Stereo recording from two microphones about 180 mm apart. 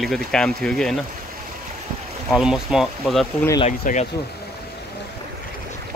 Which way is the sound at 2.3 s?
Centre (ahead or behind).